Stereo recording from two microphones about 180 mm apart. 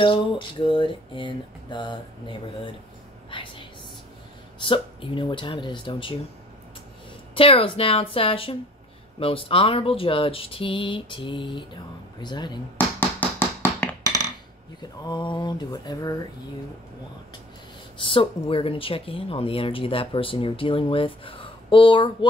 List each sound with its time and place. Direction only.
0.7 s speech: 30° left (ahead or behind)
3.3 s whispering: 30° left (ahead or behind)
4.6 s speech: 30° left (ahead or behind)
7.3 s a woman's voice: 30° left (ahead or behind)
13.4 s tap: 10° left (ahead or behind)
14.8 s speech: 25° left (ahead or behind)
17.9 s speech: 30° left (ahead or behind)